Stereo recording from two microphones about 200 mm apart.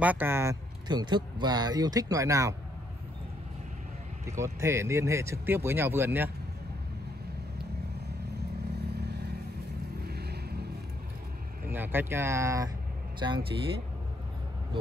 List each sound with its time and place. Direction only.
0.0 s speech: 10° right (ahead or behind)
4.4 s speech: 15° right (ahead or behind)
8.9 s vehicle: 55° right (ahead or behind)
10.0 s boat: 55° right (ahead or behind)
11.7 s speech: 10° right (ahead or behind)